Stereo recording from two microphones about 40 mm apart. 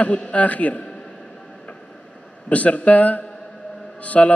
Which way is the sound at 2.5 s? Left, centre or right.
Left.